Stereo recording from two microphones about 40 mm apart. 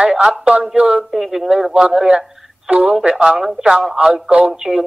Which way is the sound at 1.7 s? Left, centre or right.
Right.